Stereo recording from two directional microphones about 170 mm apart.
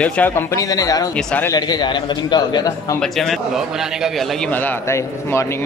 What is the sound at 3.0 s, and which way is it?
A man's voice, centre (ahead or behind).